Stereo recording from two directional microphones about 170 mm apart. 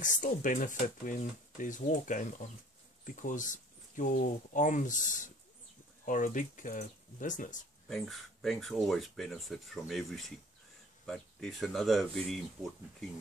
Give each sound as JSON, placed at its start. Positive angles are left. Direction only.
{"t": 0.0, "sound": "speech", "side_deg": 50}
{"t": 7.9, "sound": "speech", "side_deg": 0}